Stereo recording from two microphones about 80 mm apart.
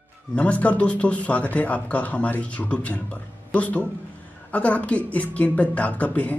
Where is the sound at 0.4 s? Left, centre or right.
Centre.